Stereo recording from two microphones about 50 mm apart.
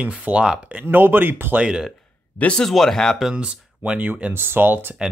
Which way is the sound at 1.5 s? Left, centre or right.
Right.